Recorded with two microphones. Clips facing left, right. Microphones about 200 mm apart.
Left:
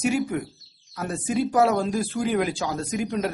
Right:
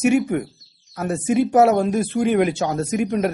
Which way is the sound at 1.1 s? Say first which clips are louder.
Right 6 dB; 25° right (ahead or behind).